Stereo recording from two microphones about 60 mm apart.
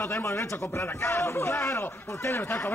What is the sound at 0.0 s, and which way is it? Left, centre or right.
A man's voice, left.